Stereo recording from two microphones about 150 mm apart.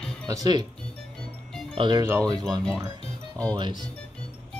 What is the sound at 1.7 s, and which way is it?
Speech, 30° right (ahead or behind).